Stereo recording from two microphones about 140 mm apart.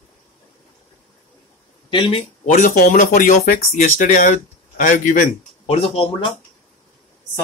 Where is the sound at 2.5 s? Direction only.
65° left (ahead or behind).